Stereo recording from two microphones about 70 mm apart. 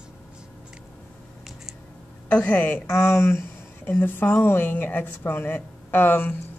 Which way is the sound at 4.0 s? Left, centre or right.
Left.